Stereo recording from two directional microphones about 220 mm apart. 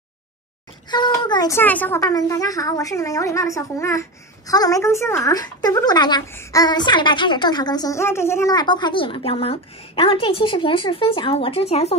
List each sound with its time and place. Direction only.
0.8 s speech: 20° left (ahead or behind)